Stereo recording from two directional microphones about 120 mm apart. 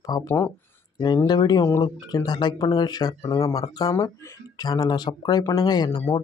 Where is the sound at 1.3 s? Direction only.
35° left (ahead or behind).